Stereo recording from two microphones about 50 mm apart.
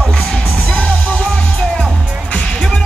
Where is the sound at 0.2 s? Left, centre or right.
Left.